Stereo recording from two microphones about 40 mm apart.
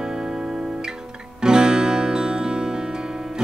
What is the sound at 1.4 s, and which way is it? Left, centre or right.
Music, centre.